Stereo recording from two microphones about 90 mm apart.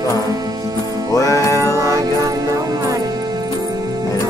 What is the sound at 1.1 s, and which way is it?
Music, 35° left (ahead or behind).